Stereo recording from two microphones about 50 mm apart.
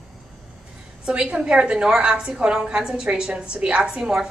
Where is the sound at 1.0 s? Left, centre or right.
Centre.